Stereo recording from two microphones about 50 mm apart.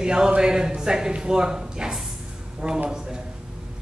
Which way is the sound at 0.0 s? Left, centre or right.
Centre.